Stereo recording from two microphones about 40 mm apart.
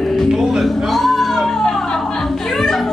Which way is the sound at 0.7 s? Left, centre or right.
Centre.